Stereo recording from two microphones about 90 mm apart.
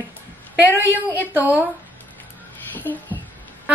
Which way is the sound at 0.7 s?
20° right (ahead or behind).